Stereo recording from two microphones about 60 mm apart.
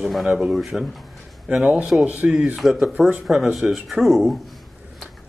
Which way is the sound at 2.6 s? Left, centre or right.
Centre.